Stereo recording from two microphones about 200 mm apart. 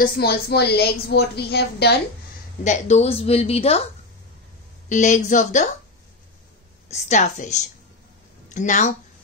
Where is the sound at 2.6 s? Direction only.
35° left (ahead or behind).